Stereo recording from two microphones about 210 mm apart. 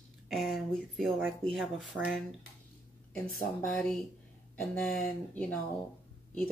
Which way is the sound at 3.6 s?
5° left (ahead or behind).